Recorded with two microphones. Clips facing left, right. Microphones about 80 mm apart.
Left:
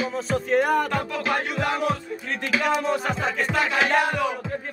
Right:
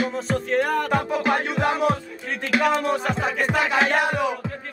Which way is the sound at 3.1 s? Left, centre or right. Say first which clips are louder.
Right 1 dB; centre.